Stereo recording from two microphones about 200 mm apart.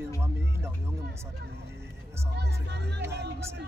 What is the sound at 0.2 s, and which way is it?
Music, 15° right (ahead or behind).